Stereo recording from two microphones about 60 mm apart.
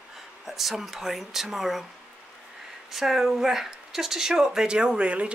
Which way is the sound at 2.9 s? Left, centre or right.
Centre.